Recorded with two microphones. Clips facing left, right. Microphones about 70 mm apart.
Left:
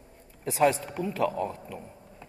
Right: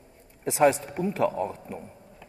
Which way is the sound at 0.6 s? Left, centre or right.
Right.